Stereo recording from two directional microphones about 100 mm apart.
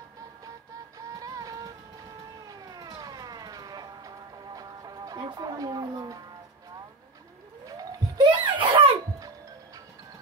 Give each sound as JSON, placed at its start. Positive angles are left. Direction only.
{"t": 0.9, "sound": "music", "side_deg": -40}
{"t": 2.4, "sound": "vehicle", "side_deg": -40}
{"t": 7.6, "sound": "a sound", "side_deg": -45}